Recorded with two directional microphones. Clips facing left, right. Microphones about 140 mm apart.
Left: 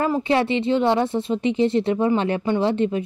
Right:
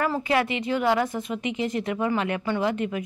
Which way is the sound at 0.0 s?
25° left (ahead or behind).